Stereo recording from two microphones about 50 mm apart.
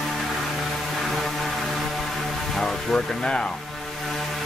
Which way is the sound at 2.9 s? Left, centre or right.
Centre.